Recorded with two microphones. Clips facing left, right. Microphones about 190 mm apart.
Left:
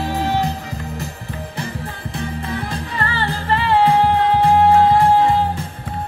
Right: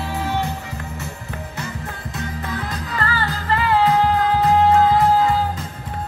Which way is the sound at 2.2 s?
30° left (ahead or behind).